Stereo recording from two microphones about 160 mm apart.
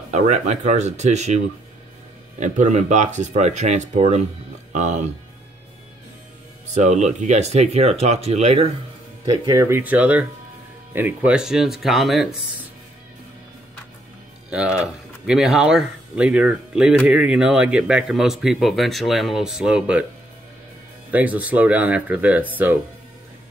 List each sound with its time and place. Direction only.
0.1 s speech: 45° right (ahead or behind)
2.4 s speech: 50° right (ahead or behind)
6.7 s speech: 45° right (ahead or behind)
9.2 s speech: 20° right (ahead or behind); by 12.4 s centre (ahead or behind)
14.5 s speech: 5° right (ahead or behind)
21.1 s speech: 10° right (ahead or behind)